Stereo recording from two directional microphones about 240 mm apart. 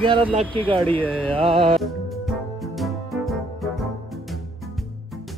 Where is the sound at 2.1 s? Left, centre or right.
Centre.